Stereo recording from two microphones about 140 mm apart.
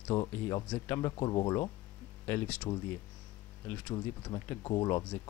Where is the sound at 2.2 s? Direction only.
15° left (ahead or behind).